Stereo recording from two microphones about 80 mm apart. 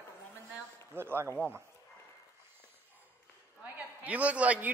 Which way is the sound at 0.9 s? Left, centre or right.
Right.